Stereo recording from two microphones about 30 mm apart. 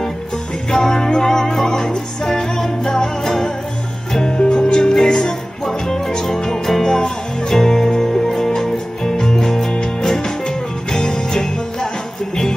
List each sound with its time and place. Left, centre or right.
0.7 s music: centre
4.3 s music: left
4.7 s music: centre